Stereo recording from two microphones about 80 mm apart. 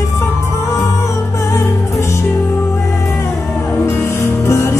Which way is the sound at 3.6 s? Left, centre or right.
Left.